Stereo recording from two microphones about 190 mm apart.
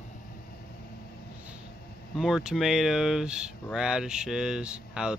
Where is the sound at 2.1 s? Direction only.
5° right (ahead or behind).